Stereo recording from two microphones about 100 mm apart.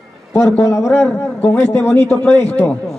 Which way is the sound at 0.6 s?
30° left (ahead or behind).